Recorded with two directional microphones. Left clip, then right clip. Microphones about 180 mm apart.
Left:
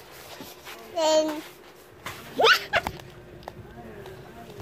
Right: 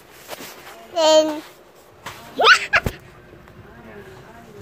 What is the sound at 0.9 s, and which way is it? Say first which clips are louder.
Speech: right 8 dB; 30° right (ahead or behind).